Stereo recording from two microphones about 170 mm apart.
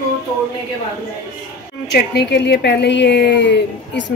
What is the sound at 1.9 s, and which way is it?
Speech, 80° left.